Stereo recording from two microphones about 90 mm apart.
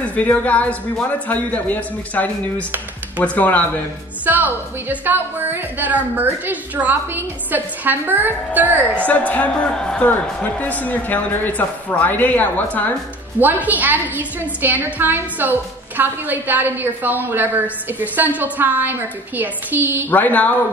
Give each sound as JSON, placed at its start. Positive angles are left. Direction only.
{"t": 0.0, "sound": "speech", "side_deg": 15}
{"t": 4.3, "sound": "a woman's voice", "side_deg": -20}
{"t": 9.0, "sound": "speech", "side_deg": 15}
{"t": 13.7, "sound": "a woman's voice", "side_deg": -20}
{"t": 20.1, "sound": "speech", "side_deg": 20}